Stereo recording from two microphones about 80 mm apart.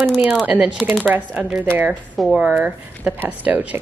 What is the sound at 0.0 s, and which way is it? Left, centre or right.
Speech, right.